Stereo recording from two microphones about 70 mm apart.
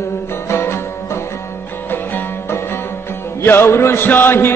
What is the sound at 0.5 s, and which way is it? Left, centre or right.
Music, left.